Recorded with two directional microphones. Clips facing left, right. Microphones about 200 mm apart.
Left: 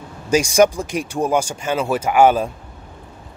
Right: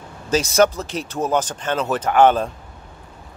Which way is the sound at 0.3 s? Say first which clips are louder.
Left 2 dB; 15° left (ahead or behind).